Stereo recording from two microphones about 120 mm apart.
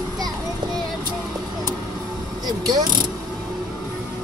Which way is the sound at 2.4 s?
30° right (ahead or behind).